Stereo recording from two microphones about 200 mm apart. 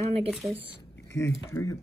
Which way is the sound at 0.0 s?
30° right (ahead or behind).